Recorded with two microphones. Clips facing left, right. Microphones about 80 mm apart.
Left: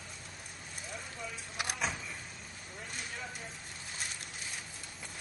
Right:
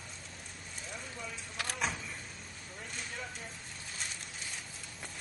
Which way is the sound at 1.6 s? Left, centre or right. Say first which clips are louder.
Left 1 dB; centre.